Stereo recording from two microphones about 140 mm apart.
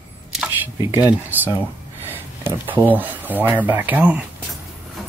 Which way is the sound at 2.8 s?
10° right (ahead or behind).